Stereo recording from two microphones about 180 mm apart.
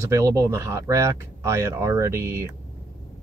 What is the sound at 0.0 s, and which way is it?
Speech, 15° right (ahead or behind).